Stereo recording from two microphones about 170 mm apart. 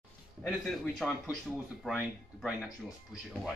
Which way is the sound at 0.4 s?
5° left (ahead or behind).